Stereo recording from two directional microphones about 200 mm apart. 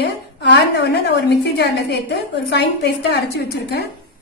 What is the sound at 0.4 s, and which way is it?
A woman's voice, 55° left (ahead or behind).